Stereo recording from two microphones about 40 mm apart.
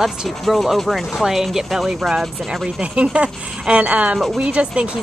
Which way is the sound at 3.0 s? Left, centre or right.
Right.